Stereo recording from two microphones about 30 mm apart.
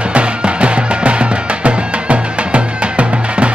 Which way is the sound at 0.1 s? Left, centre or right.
Right.